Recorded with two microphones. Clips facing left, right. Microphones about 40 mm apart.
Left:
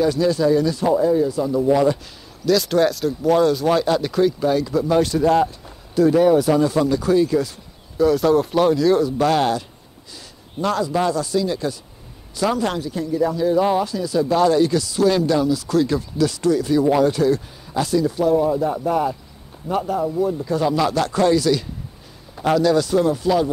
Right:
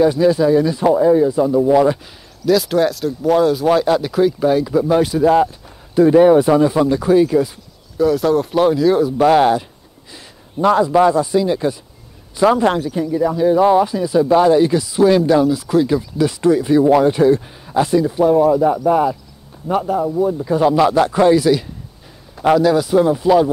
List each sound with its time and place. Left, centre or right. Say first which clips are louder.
0.0 s speech: right 5 dB; centre
2.4 s speech: right 2 dB; centre
5.9 s speech: right 5 dB; right
8.0 s speech: right 1 dB; centre